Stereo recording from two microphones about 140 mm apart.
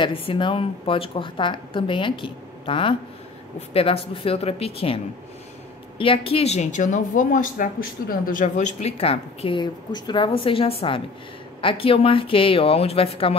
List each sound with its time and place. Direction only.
0.0 s speech: 35° left (ahead or behind)